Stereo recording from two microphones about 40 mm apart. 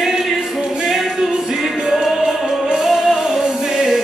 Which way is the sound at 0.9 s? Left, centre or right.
Centre.